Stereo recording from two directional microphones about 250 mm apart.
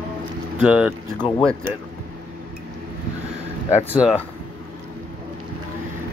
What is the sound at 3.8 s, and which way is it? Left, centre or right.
Speech, centre.